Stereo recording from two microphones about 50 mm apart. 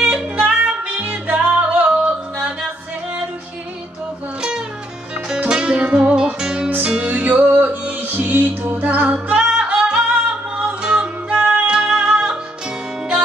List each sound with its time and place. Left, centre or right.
0.0 s music: right
4.4 s music: centre
7.1 s music: right
7.4 s music: right
9.3 s music: centre